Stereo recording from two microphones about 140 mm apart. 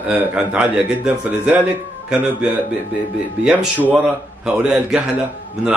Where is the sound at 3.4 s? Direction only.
10° right (ahead or behind).